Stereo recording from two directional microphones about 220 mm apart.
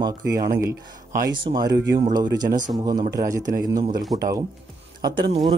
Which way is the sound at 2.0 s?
20° right (ahead or behind).